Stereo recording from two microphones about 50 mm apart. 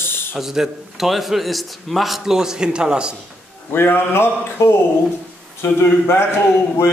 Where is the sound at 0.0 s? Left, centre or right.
Left.